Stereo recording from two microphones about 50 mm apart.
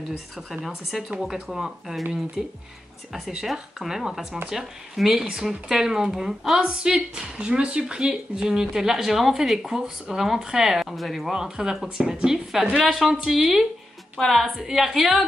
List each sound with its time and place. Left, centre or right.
0.6 s a woman's voice: centre
6.6 s a woman's voice: centre
11.3 s a woman's voice: centre